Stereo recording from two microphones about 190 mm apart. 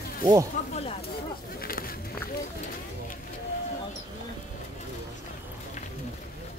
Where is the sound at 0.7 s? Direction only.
30° left (ahead or behind).